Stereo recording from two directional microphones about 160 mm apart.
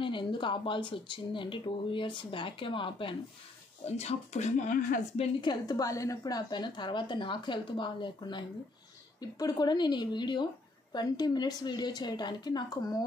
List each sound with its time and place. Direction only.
0.0 s speech: 30° left (ahead or behind); by 5.2 s 55° left (ahead or behind)
5.2 s a woman's voice: 25° left (ahead or behind)